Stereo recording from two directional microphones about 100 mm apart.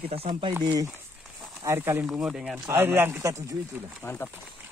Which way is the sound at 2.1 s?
5° right (ahead or behind).